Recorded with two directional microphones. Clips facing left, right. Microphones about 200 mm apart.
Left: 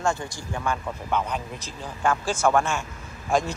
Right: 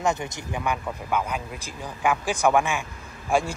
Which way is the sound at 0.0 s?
20° right (ahead or behind).